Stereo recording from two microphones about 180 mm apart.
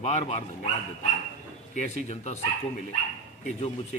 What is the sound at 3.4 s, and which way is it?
Speech, 40° left (ahead or behind).